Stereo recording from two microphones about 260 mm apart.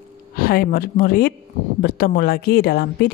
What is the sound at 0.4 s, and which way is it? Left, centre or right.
A woman's voice, left.